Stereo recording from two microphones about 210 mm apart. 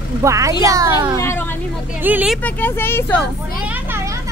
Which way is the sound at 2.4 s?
10° left (ahead or behind).